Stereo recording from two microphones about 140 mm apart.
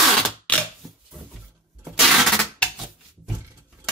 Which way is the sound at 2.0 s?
Centre (ahead or behind).